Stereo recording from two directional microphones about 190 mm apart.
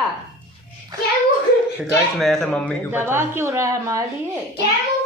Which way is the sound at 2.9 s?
10° right (ahead or behind).